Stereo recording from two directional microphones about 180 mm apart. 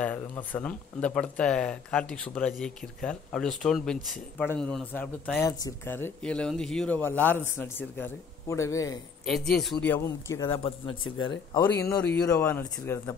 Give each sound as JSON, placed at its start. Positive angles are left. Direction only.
{"t": 0.0, "sound": "speech", "side_deg": 10}
{"t": 9.2, "sound": "speech", "side_deg": 0}
{"t": 12.0, "sound": "speech", "side_deg": 5}